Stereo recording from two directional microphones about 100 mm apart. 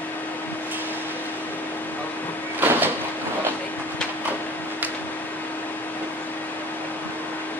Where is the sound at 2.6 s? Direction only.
20° right (ahead or behind).